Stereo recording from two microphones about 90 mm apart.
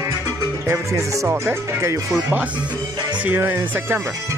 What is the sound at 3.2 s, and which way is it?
Speech, 20° right (ahead or behind).